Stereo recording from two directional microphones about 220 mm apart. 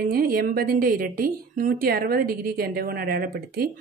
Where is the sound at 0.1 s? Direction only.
40° right (ahead or behind).